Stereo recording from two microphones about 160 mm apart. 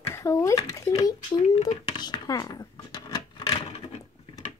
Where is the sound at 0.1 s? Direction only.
20° left (ahead or behind).